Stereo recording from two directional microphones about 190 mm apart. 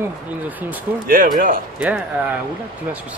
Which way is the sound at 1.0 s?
45° right (ahead or behind).